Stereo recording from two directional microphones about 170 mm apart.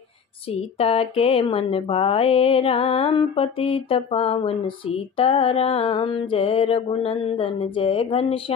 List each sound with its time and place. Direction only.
0.5 s speech: 35° left (ahead or behind)